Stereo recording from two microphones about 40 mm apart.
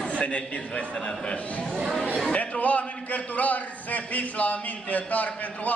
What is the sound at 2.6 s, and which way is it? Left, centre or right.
A man's voice, left.